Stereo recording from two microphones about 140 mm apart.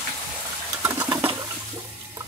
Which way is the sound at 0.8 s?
20° right (ahead or behind).